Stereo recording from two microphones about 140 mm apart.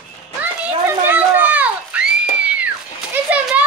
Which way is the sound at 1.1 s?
15° right (ahead or behind).